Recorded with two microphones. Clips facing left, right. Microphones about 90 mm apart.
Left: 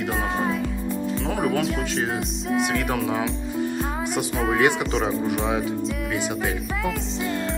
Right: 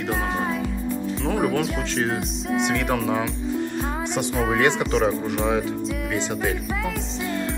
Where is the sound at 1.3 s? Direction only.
Centre (ahead or behind).